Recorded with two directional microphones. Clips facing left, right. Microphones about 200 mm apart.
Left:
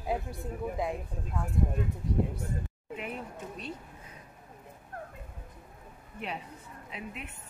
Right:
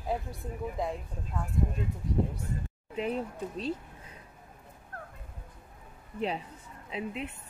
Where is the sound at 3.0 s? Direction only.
30° right (ahead or behind).